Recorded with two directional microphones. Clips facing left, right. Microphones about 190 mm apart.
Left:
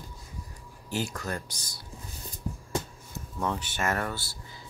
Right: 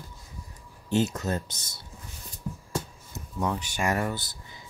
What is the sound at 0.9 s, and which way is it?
Speech, 20° right (ahead or behind).